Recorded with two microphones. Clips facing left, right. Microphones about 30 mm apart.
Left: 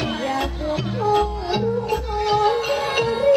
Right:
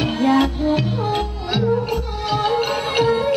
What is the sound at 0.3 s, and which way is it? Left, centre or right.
Music, right.